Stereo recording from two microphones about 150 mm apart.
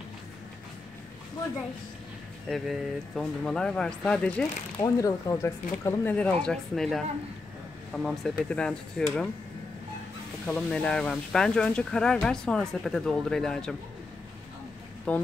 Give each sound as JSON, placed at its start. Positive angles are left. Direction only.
{"t": 2.5, "sound": "speech", "side_deg": 5}
{"t": 4.8, "sound": "speech", "side_deg": 25}
{"t": 5.9, "sound": "speech", "side_deg": 10}
{"t": 10.4, "sound": "speech", "side_deg": 5}
{"t": 15.1, "sound": "speech", "side_deg": 10}